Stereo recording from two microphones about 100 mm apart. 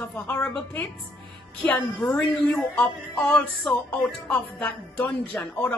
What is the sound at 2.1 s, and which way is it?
Speech, 10° left (ahead or behind).